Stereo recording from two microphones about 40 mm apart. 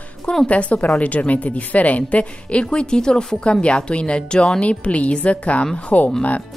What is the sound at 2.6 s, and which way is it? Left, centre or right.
A woman's voice, left.